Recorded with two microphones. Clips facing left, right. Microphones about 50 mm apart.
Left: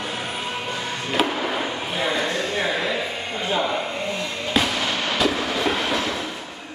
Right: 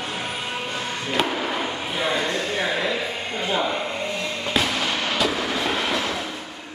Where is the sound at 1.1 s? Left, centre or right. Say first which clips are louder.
Left 1 dB; centre.